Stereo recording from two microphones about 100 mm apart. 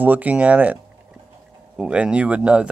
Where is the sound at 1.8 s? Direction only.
10° right (ahead or behind).